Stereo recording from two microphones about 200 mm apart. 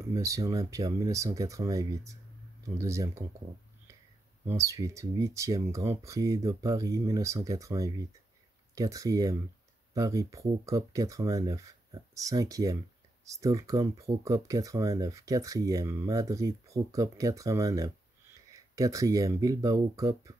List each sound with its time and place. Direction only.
0.0 s speech: 15° right (ahead or behind)
4.5 s speech: 15° right (ahead or behind)